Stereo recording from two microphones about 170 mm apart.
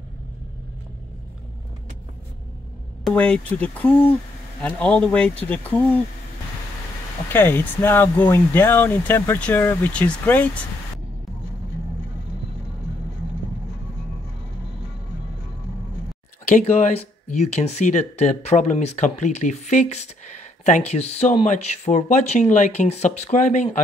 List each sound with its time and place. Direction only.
3.0 s speech: 5° left (ahead or behind)
7.2 s speech: 10° left (ahead or behind)
16.5 s speech: 45° left (ahead or behind)